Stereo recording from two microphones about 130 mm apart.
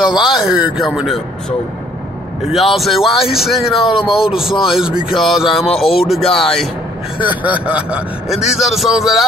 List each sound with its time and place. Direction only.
0.0 s speech: 35° left (ahead or behind)
0.4 s speech: 5° right (ahead or behind)
2.5 s speech: centre (ahead or behind)
7.6 s speech: 10° right (ahead or behind)